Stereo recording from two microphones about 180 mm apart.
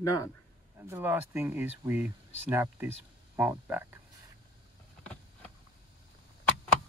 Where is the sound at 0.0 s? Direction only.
20° left (ahead or behind).